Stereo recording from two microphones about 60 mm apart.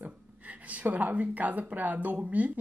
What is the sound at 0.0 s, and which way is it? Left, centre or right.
Speech, right.